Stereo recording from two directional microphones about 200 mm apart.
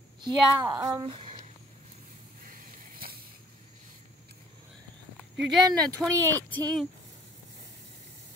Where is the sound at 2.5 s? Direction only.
45° right (ahead or behind).